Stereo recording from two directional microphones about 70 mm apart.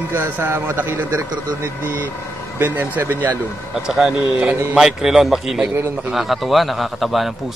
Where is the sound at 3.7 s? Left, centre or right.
Centre.